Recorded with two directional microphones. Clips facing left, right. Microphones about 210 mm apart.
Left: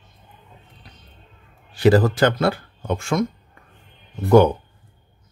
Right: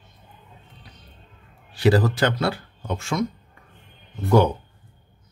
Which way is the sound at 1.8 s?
50° left (ahead or behind).